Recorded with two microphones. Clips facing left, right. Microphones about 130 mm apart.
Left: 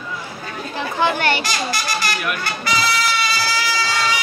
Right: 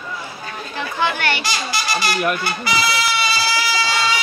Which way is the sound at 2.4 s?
10° right (ahead or behind).